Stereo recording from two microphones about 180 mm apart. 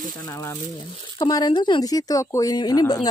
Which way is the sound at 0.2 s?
15° left (ahead or behind).